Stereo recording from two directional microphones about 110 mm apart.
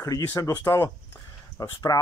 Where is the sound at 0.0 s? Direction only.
30° left (ahead or behind).